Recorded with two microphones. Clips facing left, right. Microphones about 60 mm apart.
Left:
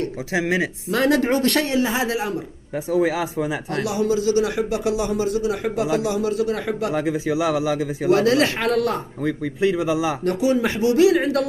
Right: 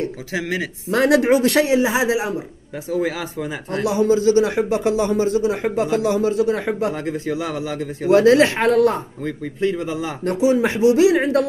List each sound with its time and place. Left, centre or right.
0.3 s speech: left
0.9 s speech: centre
2.9 s speech: centre
3.7 s speech: right
6.9 s speech: centre
8.1 s speech: right
9.2 s speech: centre
9.8 s speech: left
10.2 s speech: centre